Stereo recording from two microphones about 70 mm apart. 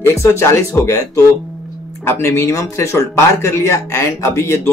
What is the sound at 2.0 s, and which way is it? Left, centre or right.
Speech, left.